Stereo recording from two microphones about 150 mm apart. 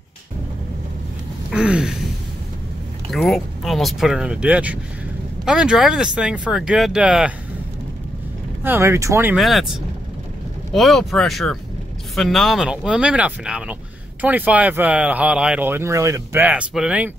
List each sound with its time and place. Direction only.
1.5 s a sound: 5° right (ahead or behind)
3.1 s speech: centre (ahead or behind)
8.6 s speech: 15° right (ahead or behind)
9.3 s speech: centre (ahead or behind)